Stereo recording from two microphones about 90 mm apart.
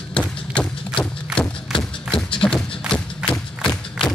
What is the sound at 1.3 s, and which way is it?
Thump, 10° left (ahead or behind).